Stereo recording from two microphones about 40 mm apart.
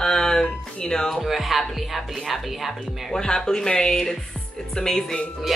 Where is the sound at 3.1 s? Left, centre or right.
Centre.